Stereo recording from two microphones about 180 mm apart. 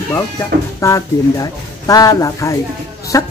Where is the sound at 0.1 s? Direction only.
15° left (ahead or behind).